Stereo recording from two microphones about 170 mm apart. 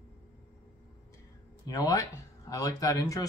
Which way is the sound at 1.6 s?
20° left (ahead or behind).